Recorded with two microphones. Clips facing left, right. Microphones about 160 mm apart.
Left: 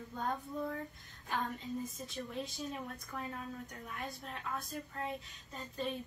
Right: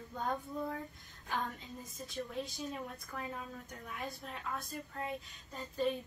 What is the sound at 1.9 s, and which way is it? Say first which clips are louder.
Speech: right 1 dB; centre (ahead or behind).